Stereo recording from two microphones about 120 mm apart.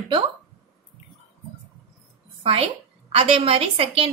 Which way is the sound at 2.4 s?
55° right (ahead or behind).